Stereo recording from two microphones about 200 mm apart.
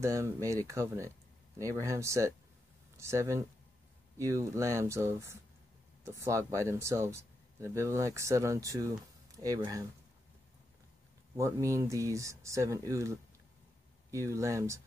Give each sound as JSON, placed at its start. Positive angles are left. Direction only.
{"t": 0.0, "sound": "speech", "side_deg": -15}
{"t": 11.3, "sound": "speech", "side_deg": -15}
{"t": 14.1, "sound": "speech", "side_deg": -15}